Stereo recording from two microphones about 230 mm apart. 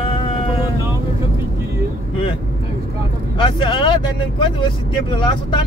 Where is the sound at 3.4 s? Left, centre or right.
Left.